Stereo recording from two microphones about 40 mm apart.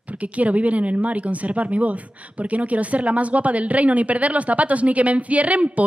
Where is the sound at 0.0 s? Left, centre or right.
Right.